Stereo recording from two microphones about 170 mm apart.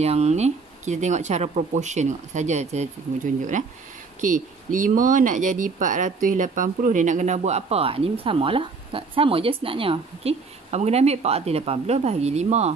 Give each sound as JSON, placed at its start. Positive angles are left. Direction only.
{"t": 0.0, "sound": "speech", "side_deg": -40}
{"t": 4.2, "sound": "speech", "side_deg": -50}